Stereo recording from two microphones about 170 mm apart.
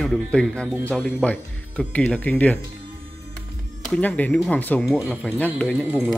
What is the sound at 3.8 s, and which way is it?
Speech, 5° left (ahead or behind).